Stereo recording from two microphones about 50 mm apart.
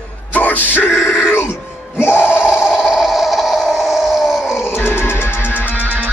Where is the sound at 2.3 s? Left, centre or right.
Centre.